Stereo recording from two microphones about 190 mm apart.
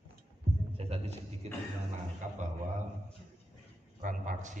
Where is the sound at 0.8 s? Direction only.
35° right (ahead or behind).